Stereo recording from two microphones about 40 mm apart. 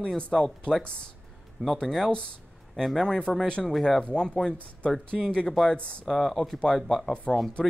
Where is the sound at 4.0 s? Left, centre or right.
Left.